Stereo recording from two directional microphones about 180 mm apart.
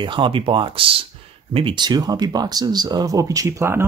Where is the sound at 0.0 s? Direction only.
25° right (ahead or behind).